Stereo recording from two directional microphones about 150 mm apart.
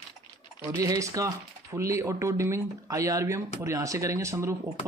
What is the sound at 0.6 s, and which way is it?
Speech, 20° right (ahead or behind).